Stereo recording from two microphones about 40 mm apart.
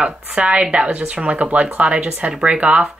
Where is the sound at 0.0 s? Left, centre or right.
Right.